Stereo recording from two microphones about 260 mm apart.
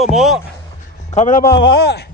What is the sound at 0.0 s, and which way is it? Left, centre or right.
Speech, centre.